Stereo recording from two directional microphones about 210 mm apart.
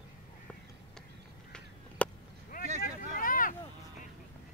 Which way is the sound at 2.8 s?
40° left (ahead or behind).